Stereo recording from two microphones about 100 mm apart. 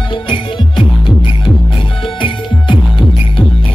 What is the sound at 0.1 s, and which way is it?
Music, 60° left (ahead or behind).